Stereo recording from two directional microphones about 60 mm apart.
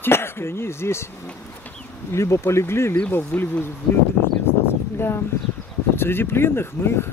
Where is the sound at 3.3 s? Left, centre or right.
Centre.